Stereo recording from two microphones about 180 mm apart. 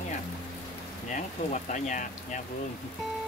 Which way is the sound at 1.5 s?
40° left (ahead or behind).